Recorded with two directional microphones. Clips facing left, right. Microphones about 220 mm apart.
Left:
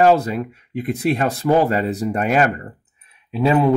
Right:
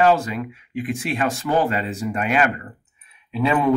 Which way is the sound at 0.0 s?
40° left (ahead or behind).